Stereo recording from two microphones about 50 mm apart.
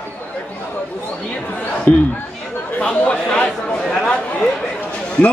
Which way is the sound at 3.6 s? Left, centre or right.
Centre.